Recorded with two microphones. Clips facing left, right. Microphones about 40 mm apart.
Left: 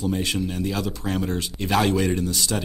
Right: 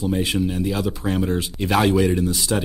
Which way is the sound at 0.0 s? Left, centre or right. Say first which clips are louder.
Right 3 dB; centre.